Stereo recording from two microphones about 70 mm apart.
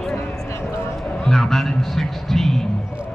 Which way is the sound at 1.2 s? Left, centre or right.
Centre.